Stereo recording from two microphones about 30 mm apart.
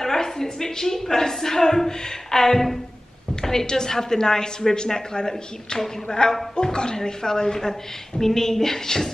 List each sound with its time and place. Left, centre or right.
0.0 s a woman's voice: centre